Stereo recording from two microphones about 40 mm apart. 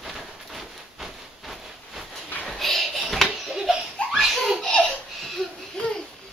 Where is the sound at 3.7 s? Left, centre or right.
Centre.